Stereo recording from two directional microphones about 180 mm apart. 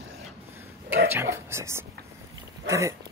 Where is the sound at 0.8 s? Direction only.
10° right (ahead or behind).